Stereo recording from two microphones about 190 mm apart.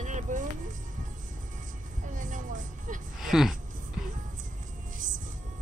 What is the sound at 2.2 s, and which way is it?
Music, 45° right (ahead or behind).